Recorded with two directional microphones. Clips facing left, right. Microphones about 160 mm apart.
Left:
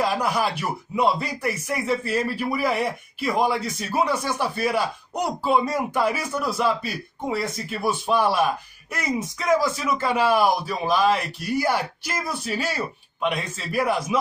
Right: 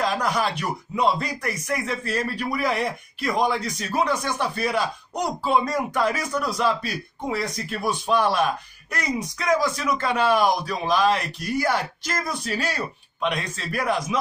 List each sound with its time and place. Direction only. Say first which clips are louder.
0.0 s speech: left 1 dB; 5° left (ahead or behind)